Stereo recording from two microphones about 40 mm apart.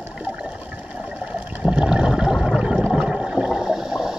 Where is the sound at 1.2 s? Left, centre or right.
Right.